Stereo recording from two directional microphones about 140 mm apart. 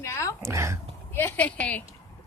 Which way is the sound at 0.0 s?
20° left (ahead or behind).